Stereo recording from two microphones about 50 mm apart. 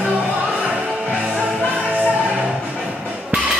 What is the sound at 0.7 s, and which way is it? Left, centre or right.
Music, right.